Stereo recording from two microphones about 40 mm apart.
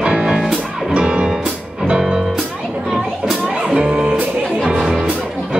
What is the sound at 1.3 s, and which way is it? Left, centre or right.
Music, centre.